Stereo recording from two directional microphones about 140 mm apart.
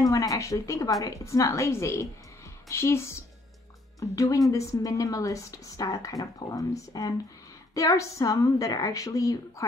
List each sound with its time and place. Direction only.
0.0 s a woman's voice: 25° left (ahead or behind)